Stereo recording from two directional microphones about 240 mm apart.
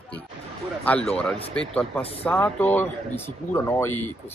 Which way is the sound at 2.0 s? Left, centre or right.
Left.